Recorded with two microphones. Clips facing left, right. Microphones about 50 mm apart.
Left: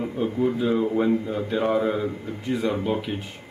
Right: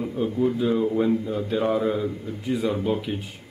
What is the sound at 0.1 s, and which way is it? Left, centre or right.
Speech, centre.